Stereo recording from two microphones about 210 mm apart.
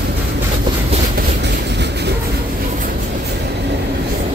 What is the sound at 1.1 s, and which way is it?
Train, 55° right (ahead or behind).